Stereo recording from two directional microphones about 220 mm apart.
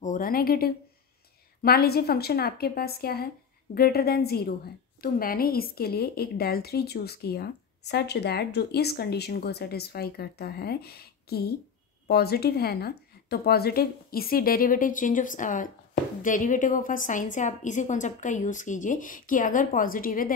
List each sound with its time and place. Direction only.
0.0 s a woman's voice: 35° left (ahead or behind)